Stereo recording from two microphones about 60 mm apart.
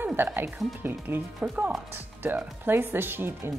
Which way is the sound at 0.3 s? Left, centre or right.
Right.